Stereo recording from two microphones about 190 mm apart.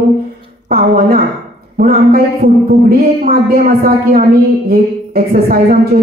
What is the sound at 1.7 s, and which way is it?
A woman's voice, 50° right (ahead or behind).